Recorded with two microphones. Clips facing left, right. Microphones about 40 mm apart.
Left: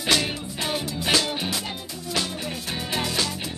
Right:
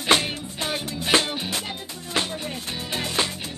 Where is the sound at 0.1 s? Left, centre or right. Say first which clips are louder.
Right 1 dB; right.